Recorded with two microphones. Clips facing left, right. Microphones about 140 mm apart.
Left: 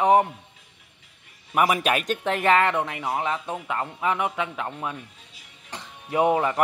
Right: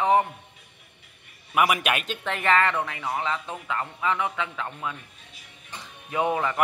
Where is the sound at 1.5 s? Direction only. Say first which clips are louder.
Left 2 dB; 35° left (ahead or behind).